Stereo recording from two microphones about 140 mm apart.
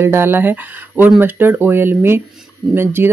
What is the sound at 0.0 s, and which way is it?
Speech, 15° right (ahead or behind).